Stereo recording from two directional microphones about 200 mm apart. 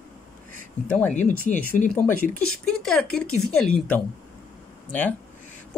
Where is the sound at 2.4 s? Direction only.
5° left (ahead or behind).